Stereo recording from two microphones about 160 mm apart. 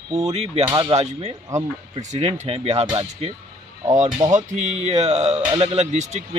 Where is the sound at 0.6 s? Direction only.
25° right (ahead or behind).